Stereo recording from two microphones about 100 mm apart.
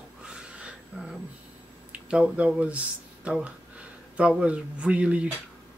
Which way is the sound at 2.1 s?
10° right (ahead or behind).